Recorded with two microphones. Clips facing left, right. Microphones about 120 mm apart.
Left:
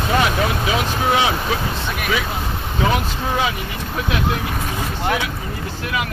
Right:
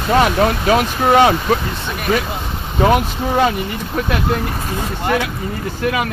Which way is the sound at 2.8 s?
55° right (ahead or behind).